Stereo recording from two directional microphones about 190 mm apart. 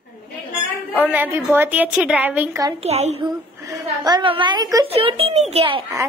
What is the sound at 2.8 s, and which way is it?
Speech, 35° right (ahead or behind).